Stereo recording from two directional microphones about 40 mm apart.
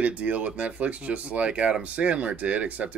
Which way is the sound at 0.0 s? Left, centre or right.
Right.